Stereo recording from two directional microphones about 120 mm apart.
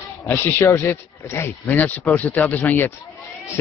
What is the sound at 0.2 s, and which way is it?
A man's voice, 20° left (ahead or behind).